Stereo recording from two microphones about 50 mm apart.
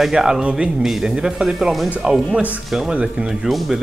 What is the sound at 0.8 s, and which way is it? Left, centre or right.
Speech, centre.